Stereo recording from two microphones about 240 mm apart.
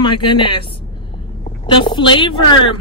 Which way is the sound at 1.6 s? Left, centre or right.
Centre.